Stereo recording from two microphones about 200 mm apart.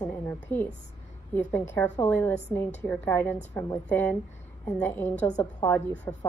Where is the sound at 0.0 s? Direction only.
10° left (ahead or behind).